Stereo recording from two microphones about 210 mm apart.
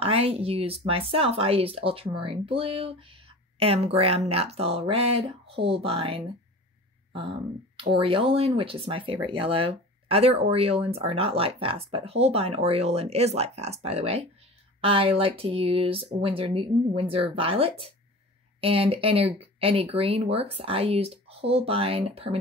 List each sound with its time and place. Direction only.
0.0 s speech: 30° right (ahead or behind)
7.9 s speech: 25° right (ahead or behind)